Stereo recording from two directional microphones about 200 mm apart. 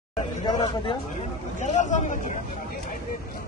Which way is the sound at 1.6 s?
35° left (ahead or behind).